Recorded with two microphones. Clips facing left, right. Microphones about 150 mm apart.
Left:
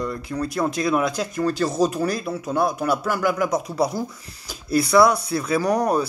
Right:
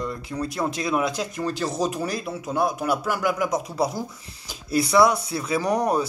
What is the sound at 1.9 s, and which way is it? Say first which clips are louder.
Speech: left 4 dB; 40° left (ahead or behind).